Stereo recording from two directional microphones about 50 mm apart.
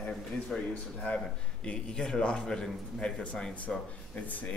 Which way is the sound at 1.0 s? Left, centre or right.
Left.